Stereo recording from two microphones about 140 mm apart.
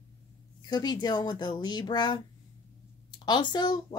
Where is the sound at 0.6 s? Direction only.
30° left (ahead or behind).